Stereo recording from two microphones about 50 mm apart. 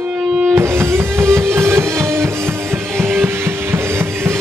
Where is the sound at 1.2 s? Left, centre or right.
Right.